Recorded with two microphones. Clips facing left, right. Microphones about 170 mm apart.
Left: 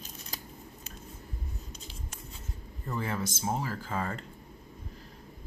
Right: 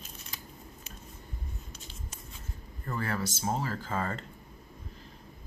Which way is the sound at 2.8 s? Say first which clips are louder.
Even; 15° left (ahead or behind).